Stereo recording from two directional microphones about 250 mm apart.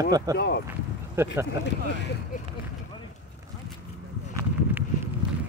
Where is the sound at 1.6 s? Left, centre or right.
Left.